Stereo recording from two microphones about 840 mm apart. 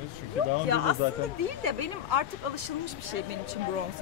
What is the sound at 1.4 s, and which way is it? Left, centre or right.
Speech, right.